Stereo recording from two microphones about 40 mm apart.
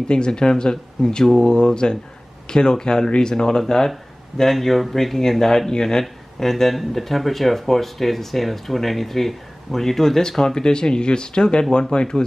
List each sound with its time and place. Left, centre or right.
0.1 s speech: centre
6.5 s speech: centre; by 12.2 s left